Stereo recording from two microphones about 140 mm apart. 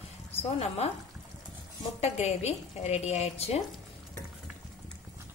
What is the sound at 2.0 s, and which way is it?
A woman's voice, 50° left (ahead or behind).